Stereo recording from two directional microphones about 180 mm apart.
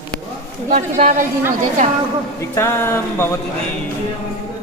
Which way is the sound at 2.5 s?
15° left (ahead or behind).